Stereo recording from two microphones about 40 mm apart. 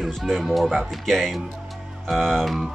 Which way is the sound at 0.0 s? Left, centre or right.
Centre.